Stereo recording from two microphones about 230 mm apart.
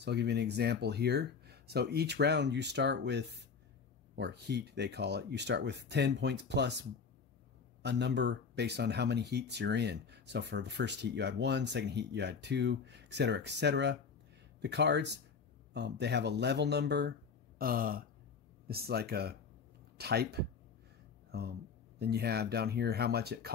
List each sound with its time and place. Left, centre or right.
0.0 s speech: right
17.6 s a sound: right
18.7 s speech: right